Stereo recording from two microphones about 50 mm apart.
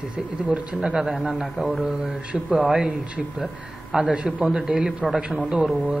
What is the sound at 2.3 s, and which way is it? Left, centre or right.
Speech, centre.